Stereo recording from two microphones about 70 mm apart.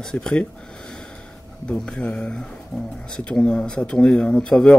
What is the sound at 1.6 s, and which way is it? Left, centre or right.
Speech, centre.